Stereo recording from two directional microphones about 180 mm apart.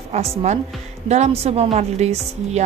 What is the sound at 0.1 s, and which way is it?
A woman's voice, 35° right (ahead or behind).